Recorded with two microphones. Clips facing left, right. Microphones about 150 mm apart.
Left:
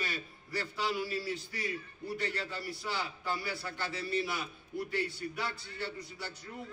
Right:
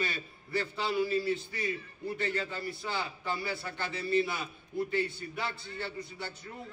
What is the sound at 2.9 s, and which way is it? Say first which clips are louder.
A man's voice: even; 20° right (ahead or behind).